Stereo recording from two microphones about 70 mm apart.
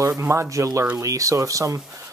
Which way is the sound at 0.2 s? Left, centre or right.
Right.